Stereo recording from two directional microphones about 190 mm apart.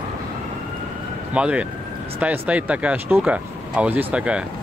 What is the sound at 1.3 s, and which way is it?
Speech, 5° right (ahead or behind).